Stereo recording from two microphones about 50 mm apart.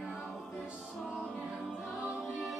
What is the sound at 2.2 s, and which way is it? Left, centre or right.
Music, centre.